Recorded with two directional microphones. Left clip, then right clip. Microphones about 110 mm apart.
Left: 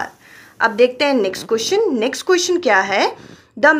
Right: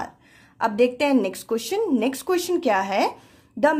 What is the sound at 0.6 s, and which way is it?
A woman's voice, 30° right (ahead or behind).